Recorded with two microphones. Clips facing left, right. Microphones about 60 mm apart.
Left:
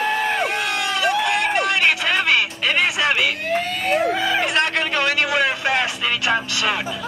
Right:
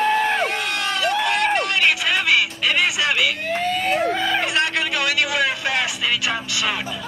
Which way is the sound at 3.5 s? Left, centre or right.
Centre.